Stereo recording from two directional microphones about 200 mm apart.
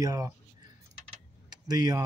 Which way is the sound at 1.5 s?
20° right (ahead or behind).